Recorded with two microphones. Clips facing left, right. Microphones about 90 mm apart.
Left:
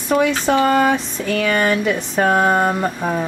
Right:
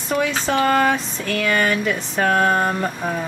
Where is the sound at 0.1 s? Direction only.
15° left (ahead or behind).